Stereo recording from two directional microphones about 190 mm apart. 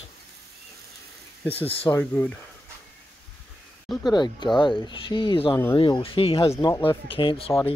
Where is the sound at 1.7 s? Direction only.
30° left (ahead or behind).